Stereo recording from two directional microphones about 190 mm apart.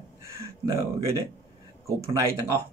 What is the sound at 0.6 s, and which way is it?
Speech, 15° right (ahead or behind).